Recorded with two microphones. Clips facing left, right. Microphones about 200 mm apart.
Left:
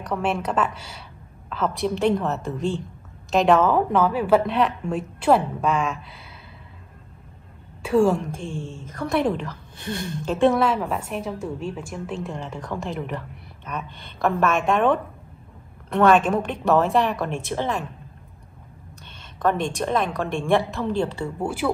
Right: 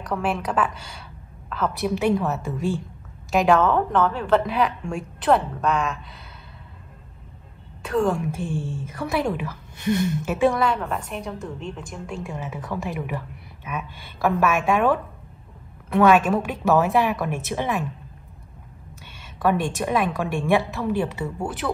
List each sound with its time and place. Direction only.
0.0 s a woman's voice: centre (ahead or behind)
7.8 s a woman's voice: 5° left (ahead or behind)
8.5 s a woman's voice: 15° left (ahead or behind)
8.9 s a woman's voice: 5° right (ahead or behind)
17.3 s a woman's voice: 15° right (ahead or behind)
19.3 s a woman's voice: 5° right (ahead or behind)